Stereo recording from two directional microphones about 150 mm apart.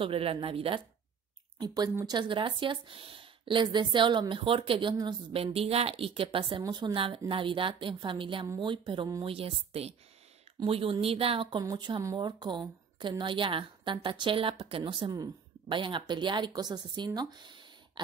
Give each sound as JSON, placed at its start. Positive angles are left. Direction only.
{"t": 0.0, "sound": "speech", "side_deg": -40}
{"t": 2.0, "sound": "speech", "side_deg": -30}
{"t": 11.6, "sound": "speech", "side_deg": -25}